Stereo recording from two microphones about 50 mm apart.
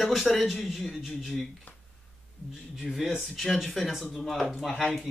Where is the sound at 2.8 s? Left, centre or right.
Centre.